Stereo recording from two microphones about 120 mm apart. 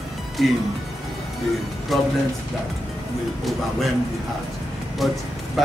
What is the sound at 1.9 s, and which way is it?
Speech, centre (ahead or behind).